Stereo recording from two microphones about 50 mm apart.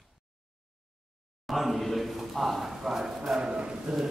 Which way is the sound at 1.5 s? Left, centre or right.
Centre.